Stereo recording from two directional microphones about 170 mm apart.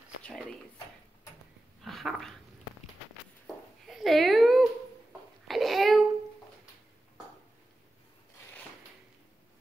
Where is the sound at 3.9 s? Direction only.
Centre (ahead or behind).